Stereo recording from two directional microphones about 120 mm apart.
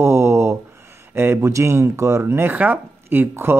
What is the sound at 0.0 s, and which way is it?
A man's voice, 20° right (ahead or behind).